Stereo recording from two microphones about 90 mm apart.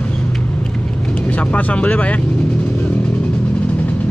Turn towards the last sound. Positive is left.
turn(degrees=15)  # may be behind; listen again after turning